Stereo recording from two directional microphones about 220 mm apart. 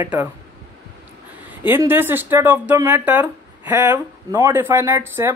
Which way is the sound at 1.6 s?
10° right (ahead or behind).